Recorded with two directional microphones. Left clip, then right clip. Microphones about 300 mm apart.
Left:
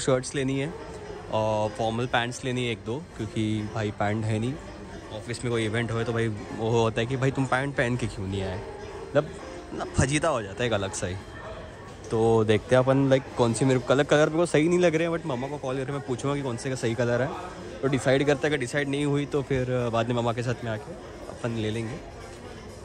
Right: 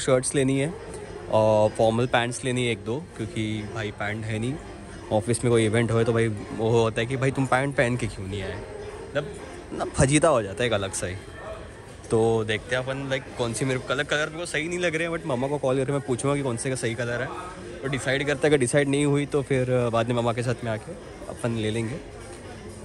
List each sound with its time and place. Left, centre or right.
0.0 s a man's voice: centre
5.1 s a man's voice: centre
9.8 s a man's voice: centre
18.5 s a man's voice: centre